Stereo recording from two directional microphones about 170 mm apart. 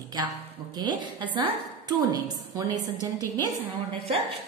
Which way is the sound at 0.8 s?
25° right (ahead or behind).